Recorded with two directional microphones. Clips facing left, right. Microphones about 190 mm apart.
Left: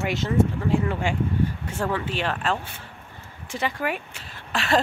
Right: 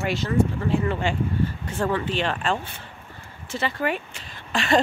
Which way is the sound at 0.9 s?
10° left (ahead or behind).